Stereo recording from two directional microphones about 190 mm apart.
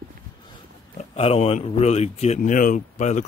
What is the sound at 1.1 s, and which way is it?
Speech, 35° left (ahead or behind).